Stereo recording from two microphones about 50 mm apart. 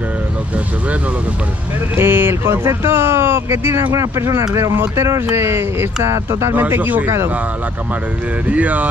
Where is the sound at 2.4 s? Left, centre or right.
Right.